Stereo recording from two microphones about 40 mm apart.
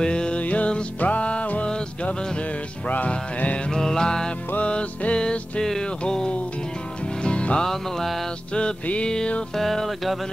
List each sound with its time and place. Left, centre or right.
0.0 s music: left
0.4 s music: left
3.7 s music: centre
4.6 s music: left
7.6 s music: centre
9.0 s music: centre
9.6 s music: centre